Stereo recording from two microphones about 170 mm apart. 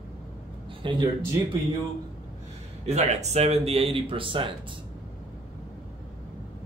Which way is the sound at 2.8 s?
40° right (ahead or behind).